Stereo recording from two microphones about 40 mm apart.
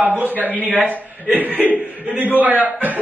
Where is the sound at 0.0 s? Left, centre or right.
Right.